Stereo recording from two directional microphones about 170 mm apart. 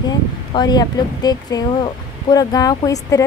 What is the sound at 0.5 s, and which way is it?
A woman's voice, 25° left (ahead or behind).